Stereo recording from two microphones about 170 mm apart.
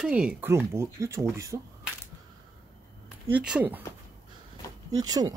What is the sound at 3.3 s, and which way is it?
Speech, 5° right (ahead or behind).